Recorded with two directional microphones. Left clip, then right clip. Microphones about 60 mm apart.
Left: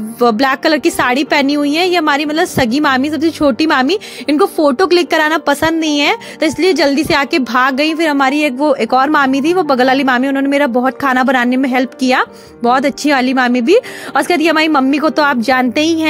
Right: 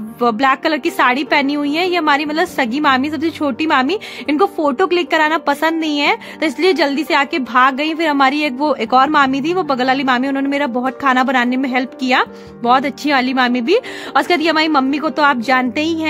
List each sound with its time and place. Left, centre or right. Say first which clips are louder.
0.2 s speech: left 3 dB; left
0.8 s a woman's voice: left 2 dB; left
2.6 s a woman's voice: left 1 dB; left
3.0 s speech: left 4 dB; left
3.4 s a woman's voice: left 3 dB; left
6.8 s a woman's voice: left 4 dB; left
7.1 s a woman's voice: left 3 dB; left
8.2 s a woman's voice: left 2 dB; centre
8.9 s speech: right 2 dB; left
11.0 s speech: right 1 dB; left
15.0 s speech: left 2 dB; left